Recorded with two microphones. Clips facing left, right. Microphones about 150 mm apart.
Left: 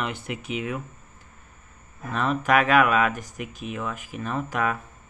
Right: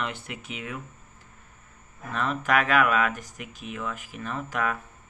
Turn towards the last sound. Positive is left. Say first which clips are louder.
# left 3 dB
turn(degrees=20)  # may be behind; listen again after turning